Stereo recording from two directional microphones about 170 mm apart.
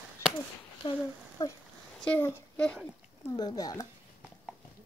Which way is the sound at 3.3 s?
25° left (ahead or behind).